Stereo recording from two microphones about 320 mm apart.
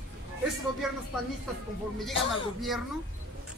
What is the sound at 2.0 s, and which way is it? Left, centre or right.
Speech, centre.